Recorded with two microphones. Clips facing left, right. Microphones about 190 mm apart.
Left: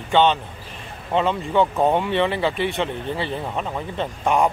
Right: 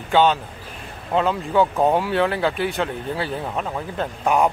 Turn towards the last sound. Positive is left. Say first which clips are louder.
# even
turn(degrees=0)  # may be behind; listen again after turning